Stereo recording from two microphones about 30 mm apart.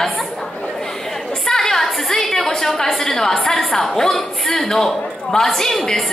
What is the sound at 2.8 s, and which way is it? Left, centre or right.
A woman's voice, centre.